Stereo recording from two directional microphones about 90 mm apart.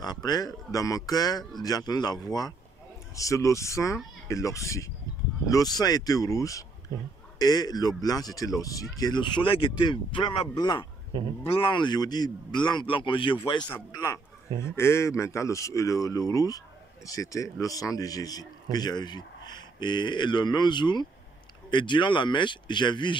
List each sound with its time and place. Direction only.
0.0 s speech: 50° left (ahead or behind)
11.4 s speech: 80° left
13.5 s speech: 55° left (ahead or behind)
14.6 s speech: 30° left (ahead or behind); by 23.1 s 60° left (ahead or behind)